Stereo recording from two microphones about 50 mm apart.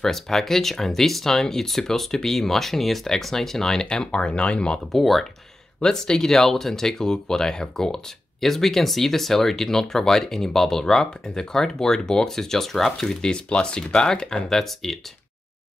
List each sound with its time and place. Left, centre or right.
0.0 s speech: centre; by 4.7 s left
4.9 s speech: centre
5.8 s speech: centre